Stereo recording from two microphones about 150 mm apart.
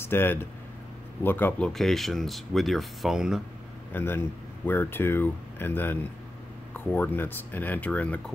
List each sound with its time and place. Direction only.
0.0 s speech: 15° left (ahead or behind)
1.7 s speech: centre (ahead or behind)
3.9 s speech: 15° left (ahead or behind)